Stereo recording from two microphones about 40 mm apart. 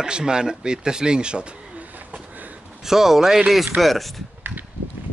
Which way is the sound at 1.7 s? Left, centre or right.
Right.